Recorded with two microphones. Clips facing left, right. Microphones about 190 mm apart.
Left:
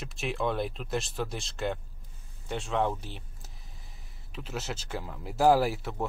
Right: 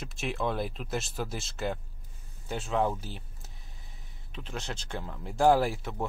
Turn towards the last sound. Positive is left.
turn(degrees=0)  # may be behind; listen again after turning